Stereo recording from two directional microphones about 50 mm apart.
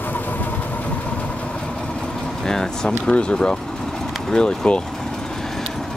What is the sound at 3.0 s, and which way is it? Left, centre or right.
Speech, centre.